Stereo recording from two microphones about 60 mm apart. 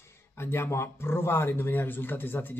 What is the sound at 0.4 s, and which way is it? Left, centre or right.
Speech, left.